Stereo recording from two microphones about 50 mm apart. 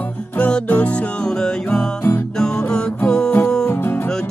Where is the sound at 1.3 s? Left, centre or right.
Centre.